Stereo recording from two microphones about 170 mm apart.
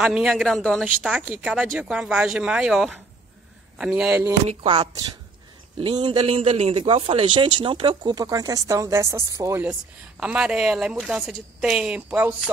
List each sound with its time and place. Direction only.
0.0 s speech: 5° right (ahead or behind)
4.5 s a man's voice: 30° right (ahead or behind); by 12.4 s 5° right (ahead or behind)